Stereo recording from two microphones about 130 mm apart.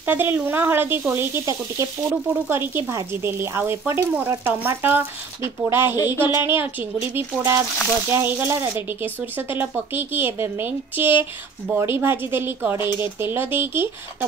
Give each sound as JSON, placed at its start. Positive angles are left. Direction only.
{"t": 0.0, "sound": "speech", "side_deg": -15}